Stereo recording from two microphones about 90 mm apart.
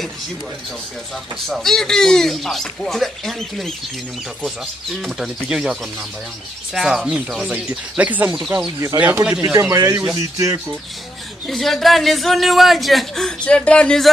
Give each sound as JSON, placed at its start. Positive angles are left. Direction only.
{"t": 1.5, "sound": "speech", "side_deg": 5}
{"t": 5.0, "sound": "speech", "side_deg": -5}
{"t": 9.4, "sound": "speech", "side_deg": -45}
{"t": 11.4, "sound": "speech", "side_deg": 5}